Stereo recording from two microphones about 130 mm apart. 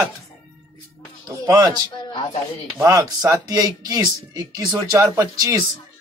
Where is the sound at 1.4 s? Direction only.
30° right (ahead or behind).